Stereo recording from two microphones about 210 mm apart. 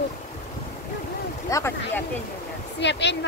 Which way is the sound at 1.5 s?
10° left (ahead or behind).